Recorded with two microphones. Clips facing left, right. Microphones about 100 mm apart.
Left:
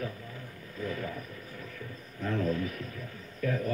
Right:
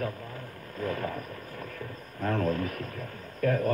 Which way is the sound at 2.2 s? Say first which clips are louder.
Right 2 dB; 50° right (ahead or behind).